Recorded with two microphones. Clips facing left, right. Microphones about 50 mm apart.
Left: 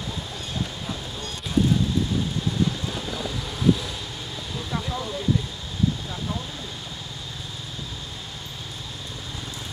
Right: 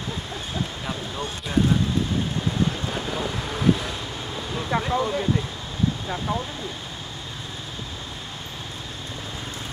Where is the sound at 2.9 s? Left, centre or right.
Right.